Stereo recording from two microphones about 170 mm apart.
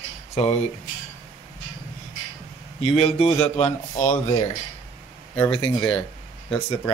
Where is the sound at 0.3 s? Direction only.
40° left (ahead or behind).